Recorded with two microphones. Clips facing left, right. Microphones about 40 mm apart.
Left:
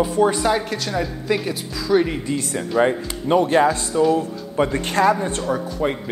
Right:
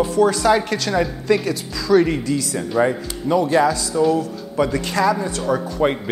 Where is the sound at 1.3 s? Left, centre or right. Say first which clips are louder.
Right 3 dB; centre.